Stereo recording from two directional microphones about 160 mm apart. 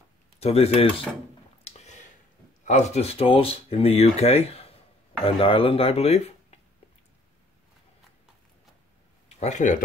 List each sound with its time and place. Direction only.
0.4 s speech: 40° left (ahead or behind)
1.7 s a sound: 40° left (ahead or behind)
2.6 s speech: 45° left (ahead or behind)
9.4 s speech: 50° left (ahead or behind)